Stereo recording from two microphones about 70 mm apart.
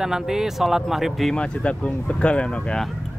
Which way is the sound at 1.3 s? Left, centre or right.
Centre.